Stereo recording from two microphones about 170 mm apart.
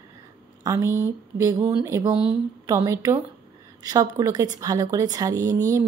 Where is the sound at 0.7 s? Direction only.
15° right (ahead or behind).